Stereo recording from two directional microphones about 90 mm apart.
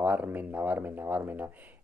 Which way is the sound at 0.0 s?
20° right (ahead or behind).